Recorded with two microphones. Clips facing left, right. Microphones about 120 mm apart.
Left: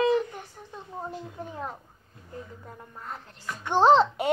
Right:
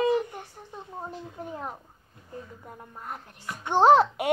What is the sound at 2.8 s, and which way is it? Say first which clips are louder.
Speech: right 1 dB; 15° right (ahead or behind).